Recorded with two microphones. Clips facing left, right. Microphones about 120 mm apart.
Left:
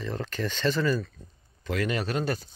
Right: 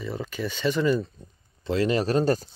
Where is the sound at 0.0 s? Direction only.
10° right (ahead or behind); by 2.5 s 40° right (ahead or behind).